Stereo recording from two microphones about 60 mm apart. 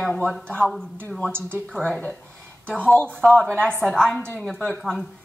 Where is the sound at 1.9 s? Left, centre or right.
Left.